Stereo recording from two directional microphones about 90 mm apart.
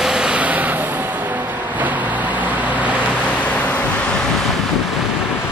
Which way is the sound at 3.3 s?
15° left (ahead or behind).